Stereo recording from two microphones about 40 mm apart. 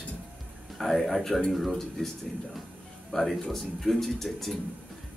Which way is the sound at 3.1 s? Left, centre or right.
Centre.